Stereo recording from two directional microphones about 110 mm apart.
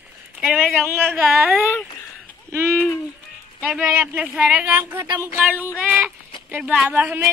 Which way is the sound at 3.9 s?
15° right (ahead or behind).